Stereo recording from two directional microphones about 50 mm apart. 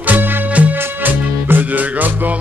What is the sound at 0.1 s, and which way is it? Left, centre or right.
Music, right.